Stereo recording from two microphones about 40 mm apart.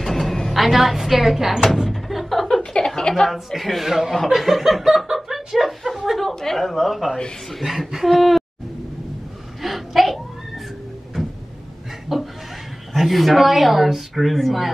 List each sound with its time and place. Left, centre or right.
0.0 s speech: centre
1.9 s door: centre
2.4 s a sound: left
3.0 s a woman's voice: centre
3.3 s a woman's voice: centre
9.6 s a sound: centre
12.1 s chuckle: centre
12.9 s speech: centre